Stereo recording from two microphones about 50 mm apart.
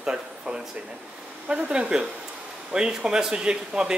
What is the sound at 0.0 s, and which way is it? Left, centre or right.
Speech, centre.